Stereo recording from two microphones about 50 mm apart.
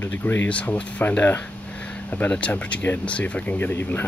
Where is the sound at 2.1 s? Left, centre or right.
Left.